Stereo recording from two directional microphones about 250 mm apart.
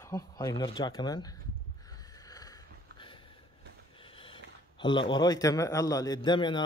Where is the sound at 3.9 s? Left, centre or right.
Left.